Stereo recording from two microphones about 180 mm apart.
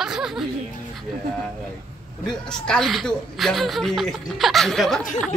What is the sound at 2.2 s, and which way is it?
Speech, 5° left (ahead or behind).